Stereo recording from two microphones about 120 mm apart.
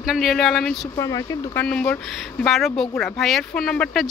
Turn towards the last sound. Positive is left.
turn(degrees=5)  # may be behind; listen again after turning